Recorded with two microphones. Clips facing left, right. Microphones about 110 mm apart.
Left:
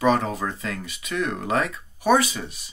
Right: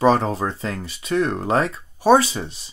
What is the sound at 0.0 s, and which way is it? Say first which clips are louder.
Speech: right 4 dB; 30° right (ahead or behind).